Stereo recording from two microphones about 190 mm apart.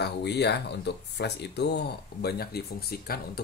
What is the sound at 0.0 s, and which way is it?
Speech, 60° left (ahead or behind).